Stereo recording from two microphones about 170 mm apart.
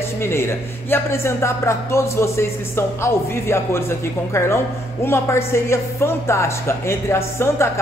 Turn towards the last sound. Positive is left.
turn(degrees=15)  # may be behind; listen again after turning